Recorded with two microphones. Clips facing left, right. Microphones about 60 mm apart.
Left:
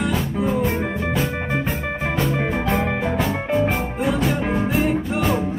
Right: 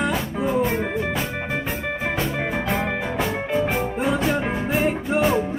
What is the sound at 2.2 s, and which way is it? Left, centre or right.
Music, centre.